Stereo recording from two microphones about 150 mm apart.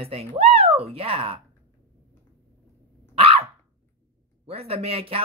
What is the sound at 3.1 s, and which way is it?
Dog, 40° right (ahead or behind).